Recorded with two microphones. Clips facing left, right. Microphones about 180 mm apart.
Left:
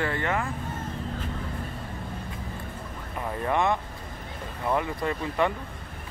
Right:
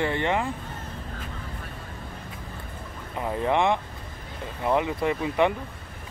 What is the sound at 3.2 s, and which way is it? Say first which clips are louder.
Speech: right 3 dB; 15° right (ahead or behind).